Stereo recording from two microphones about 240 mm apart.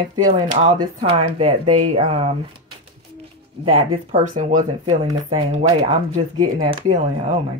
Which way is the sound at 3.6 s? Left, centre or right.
Right.